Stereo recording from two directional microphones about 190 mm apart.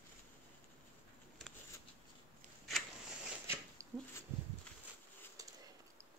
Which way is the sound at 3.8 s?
15° right (ahead or behind).